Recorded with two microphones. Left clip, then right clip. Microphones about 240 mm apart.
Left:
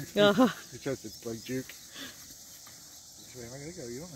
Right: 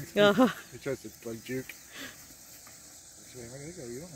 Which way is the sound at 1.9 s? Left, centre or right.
Centre.